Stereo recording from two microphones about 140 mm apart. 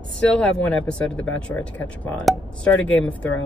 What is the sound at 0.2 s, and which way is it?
Speech, 5° left (ahead or behind).